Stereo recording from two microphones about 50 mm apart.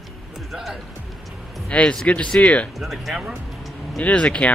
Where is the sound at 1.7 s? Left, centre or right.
Left.